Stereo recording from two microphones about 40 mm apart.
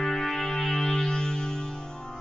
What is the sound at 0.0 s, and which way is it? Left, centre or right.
Music, centre.